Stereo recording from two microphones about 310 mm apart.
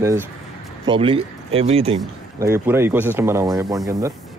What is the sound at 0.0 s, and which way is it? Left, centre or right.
Speech, centre.